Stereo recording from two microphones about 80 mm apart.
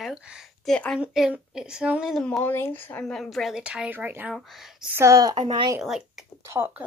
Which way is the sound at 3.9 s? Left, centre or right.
Right.